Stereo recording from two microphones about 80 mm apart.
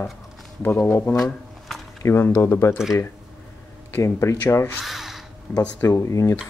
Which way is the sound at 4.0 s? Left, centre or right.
Left.